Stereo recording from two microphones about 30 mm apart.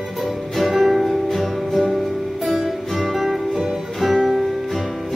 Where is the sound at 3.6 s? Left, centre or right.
Centre.